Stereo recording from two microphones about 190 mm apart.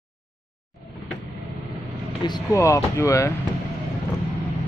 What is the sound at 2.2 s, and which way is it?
Speech, 20° left (ahead or behind).